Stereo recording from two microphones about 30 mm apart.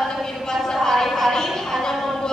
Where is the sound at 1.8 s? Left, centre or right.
Centre.